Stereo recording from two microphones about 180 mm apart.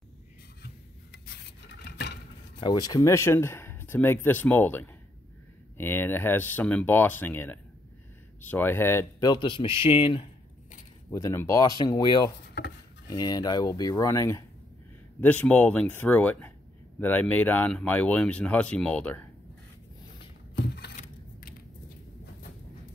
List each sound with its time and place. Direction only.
1.9 s vehicle: 65° left (ahead or behind)
2.6 s speech: 20° left (ahead or behind)
11.1 s speech: 15° left (ahead or behind)
12.6 s dishes: 65° left (ahead or behind)
13.1 s speech: 20° left (ahead or behind)
20.5 s a sound: 65° left (ahead or behind)
20.9 s a sound: 55° left (ahead or behind)